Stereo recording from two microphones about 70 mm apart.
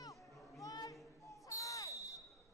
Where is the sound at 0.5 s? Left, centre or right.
Left.